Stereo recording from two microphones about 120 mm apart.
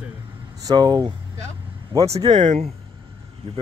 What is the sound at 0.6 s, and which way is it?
Speech, 35° right (ahead or behind).